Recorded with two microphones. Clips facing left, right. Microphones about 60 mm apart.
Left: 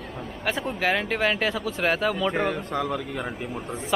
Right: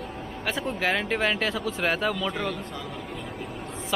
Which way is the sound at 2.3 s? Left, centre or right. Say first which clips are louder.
Left 5 dB; left.